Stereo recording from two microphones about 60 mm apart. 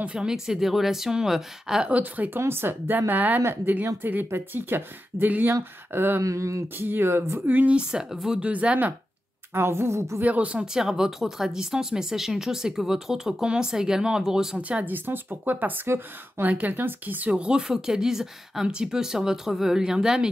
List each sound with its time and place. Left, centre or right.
0.0 s speech: centre
1.9 s speech: right
2.4 s speech: right
6.2 s speech: right
6.8 s speech: right
7.4 s speech: right
7.9 s speech: centre
8.4 s speech: right
9.5 s a woman's voice: right
10.2 s speech: right
14.9 s speech: right
17.3 s speech: centre